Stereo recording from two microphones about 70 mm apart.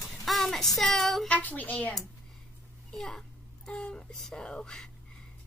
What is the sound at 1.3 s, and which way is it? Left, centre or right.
Speech, left.